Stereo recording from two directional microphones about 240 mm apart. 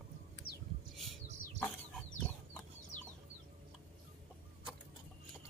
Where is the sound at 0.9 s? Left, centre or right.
Centre.